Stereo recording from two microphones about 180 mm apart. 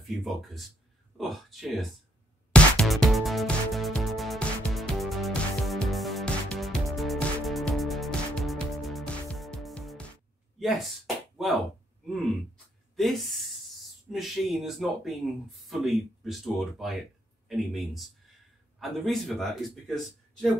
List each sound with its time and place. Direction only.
0.1 s a man's voice: centre (ahead or behind)
2.5 s music: 5° left (ahead or behind)
10.6 s speech: centre (ahead or behind)
12.9 s a sound: centre (ahead or behind)
14.1 s a man's voice: centre (ahead or behind)